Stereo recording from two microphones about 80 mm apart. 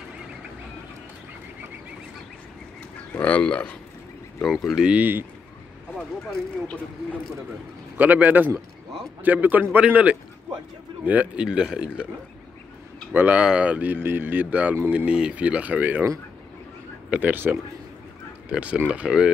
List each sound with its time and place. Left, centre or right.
3.1 s speech: centre
4.5 s speech: centre
4.8 s speech: centre
8.0 s speech: right
11.4 s speech: centre
13.1 s speech: right
17.1 s speech: right